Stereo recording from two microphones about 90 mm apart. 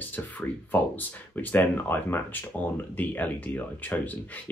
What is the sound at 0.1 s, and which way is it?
Speech, 20° left (ahead or behind).